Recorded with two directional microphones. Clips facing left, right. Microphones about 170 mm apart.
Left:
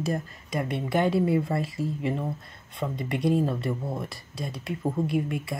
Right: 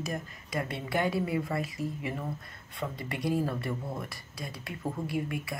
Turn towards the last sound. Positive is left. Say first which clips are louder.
# left 5 dB
turn(degrees=25)  # may be behind; listen again after turning